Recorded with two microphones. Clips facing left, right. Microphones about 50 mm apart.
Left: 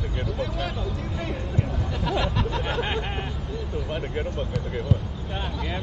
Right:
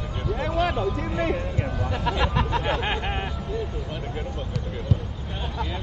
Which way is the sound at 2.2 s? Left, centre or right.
Right.